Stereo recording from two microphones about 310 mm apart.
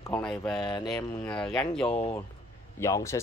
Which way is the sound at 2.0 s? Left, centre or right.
Centre.